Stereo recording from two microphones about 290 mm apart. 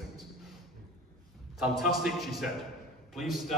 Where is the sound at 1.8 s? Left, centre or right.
Centre.